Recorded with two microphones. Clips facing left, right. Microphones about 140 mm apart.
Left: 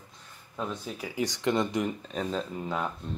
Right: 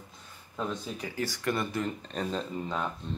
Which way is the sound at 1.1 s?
20° left (ahead or behind).